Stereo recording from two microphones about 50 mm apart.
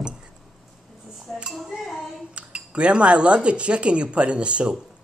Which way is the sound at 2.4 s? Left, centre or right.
Right.